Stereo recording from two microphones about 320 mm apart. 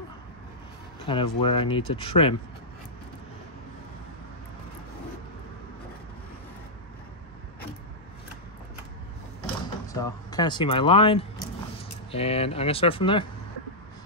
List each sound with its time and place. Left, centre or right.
1.0 s speech: centre
9.9 s speech: centre